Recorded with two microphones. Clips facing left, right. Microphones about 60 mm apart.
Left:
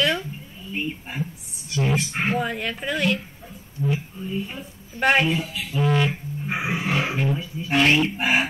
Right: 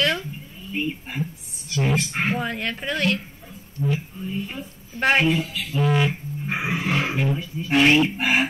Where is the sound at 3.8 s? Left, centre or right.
Centre.